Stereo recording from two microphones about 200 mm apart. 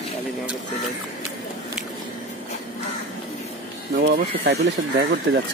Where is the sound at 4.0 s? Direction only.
55° right (ahead or behind).